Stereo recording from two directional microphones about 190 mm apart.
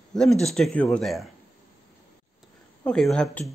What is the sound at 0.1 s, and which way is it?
Speech, centre (ahead or behind).